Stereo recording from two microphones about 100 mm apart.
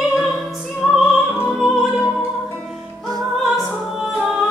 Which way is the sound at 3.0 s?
40° right (ahead or behind).